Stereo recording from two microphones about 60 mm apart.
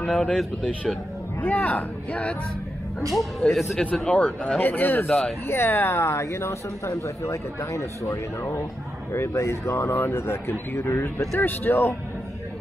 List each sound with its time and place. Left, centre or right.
0.0 s speech: centre
1.4 s speech: left
3.1 s speech: centre
4.0 s speech: centre
4.6 s speech: left